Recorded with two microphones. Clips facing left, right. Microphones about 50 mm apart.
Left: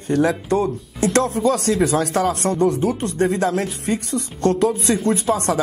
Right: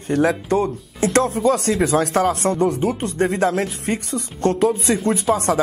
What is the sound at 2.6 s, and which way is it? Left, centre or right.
Speech, right.